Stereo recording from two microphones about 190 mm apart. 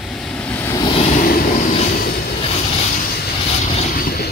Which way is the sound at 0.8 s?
30° left (ahead or behind).